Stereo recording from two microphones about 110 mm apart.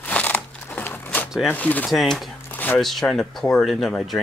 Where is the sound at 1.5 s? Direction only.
15° left (ahead or behind).